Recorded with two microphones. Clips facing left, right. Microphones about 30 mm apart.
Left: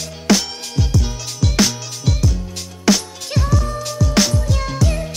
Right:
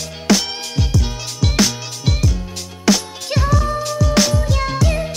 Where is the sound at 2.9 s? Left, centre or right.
Centre.